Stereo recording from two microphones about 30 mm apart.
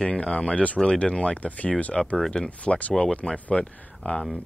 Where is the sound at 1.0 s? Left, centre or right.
Left.